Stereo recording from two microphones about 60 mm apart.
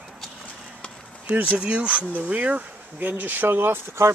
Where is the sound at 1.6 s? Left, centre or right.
Centre.